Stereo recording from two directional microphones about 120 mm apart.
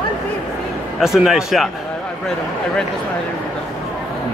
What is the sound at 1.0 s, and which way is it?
Speech, 5° right (ahead or behind).